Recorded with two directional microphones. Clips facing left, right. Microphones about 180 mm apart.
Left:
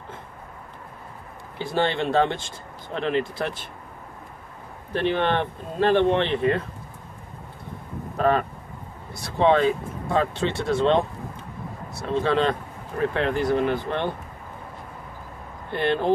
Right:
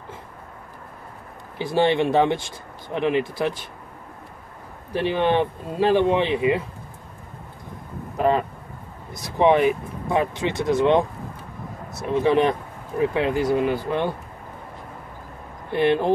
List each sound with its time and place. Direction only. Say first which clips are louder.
1.8 s speech: right 3 dB; 15° right (ahead or behind)
4.9 s speech: right 2 dB; 10° right (ahead or behind)
8.2 s speech: right 1 dB; 15° right (ahead or behind)
15.7 s speech: right 4 dB; 10° right (ahead or behind)